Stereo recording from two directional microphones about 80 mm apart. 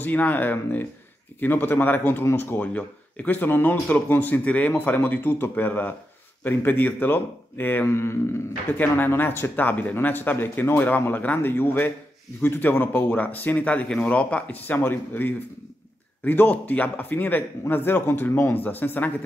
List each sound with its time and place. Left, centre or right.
0.0 s speech: left